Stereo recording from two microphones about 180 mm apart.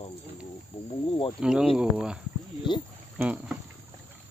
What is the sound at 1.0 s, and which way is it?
Cricket, 30° left (ahead or behind).